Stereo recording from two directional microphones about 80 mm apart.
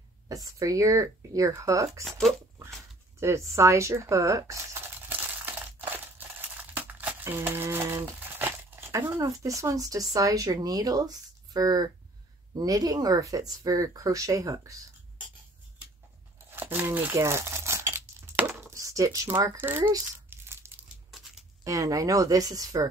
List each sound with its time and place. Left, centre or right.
0.3 s speech: right
2.0 s speech: centre
3.2 s speech: right
4.9 s crushing: right
7.2 s speech: right
16.4 s speech: right
17.2 s crumpling: right
18.3 s a sound: centre
18.7 s speech: right
20.2 s crumpling: right
21.6 s speech: right